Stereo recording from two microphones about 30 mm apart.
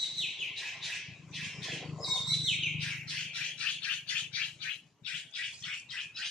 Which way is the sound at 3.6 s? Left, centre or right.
Left.